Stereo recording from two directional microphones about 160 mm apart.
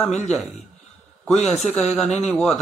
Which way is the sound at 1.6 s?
5° left (ahead or behind).